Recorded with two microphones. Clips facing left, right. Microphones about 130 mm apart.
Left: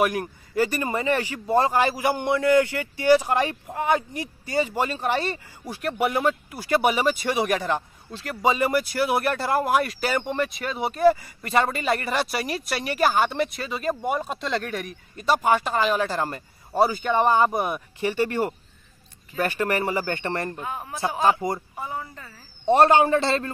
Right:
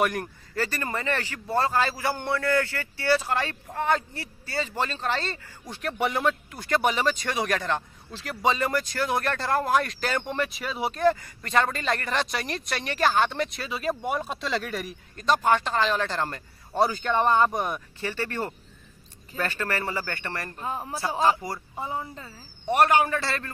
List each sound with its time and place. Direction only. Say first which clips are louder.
0.0 s speech: left 3 dB; 5° left (ahead or behind); by 20.6 s 25° left (ahead or behind)
20.6 s a man's voice: right 1 dB; 30° right (ahead or behind)
21.2 s a man's voice: left 2 dB; 25° left (ahead or behind)
21.7 s speech: even; 20° right (ahead or behind)
22.7 s a man's voice: left 4 dB; 25° left (ahead or behind)